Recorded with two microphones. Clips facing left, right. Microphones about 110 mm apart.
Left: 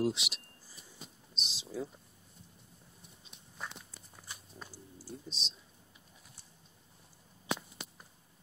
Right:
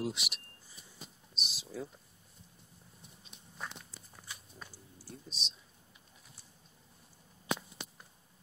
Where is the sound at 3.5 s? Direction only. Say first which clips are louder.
Even; centre (ahead or behind).